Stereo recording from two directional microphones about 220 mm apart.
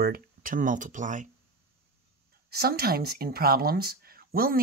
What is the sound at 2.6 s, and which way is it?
Speech, 45° right (ahead or behind).